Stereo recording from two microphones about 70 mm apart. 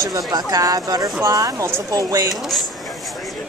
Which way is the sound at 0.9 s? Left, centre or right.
Right.